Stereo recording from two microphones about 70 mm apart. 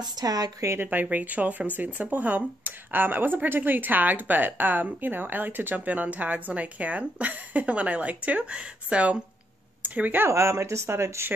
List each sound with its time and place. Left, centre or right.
0.0 s a woman's voice: right
0.7 s speech: right
10.2 s speech: right